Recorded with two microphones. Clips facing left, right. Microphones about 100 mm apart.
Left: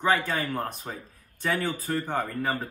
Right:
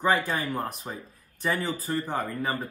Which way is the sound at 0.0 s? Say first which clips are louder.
Even; 5° right (ahead or behind).